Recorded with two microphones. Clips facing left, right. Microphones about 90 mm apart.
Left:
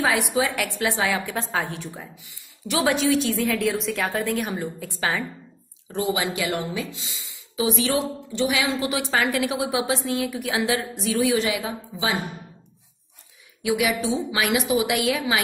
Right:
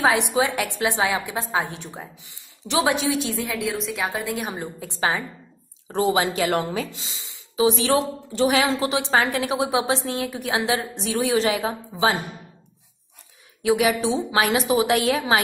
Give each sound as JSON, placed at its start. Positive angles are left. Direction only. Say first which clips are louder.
{"t": 0.0, "sound": "a woman's voice", "louder": "right 2 dB", "side_deg": -25}
{"t": 3.5, "sound": "a woman's voice", "louder": "left 2 dB", "side_deg": 0}
{"t": 4.5, "sound": "a woman's voice", "louder": "left 2 dB", "side_deg": -25}
{"t": 5.9, "sound": "a woman's voice", "louder": "right 4 dB", "side_deg": -40}
{"t": 11.0, "sound": "a woman's voice", "louder": "left 1 dB", "side_deg": -35}
{"t": 13.6, "sound": "a woman's voice", "louder": "right 3 dB", "side_deg": -35}